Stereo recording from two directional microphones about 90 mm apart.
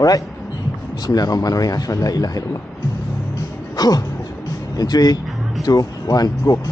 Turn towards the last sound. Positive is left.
turn(degrees=45)  # may be behind; listen again after turning